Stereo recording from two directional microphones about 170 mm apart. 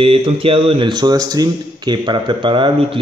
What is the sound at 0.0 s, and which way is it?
Speech, 35° right (ahead or behind).